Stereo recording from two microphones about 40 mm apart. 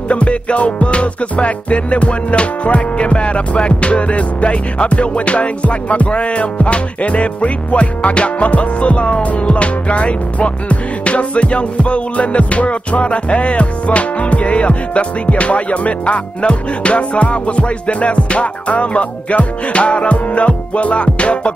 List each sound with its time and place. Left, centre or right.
0.1 s music: left